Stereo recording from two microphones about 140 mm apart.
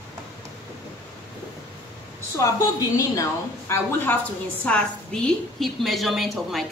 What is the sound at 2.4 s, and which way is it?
A woman's voice, 25° left (ahead or behind).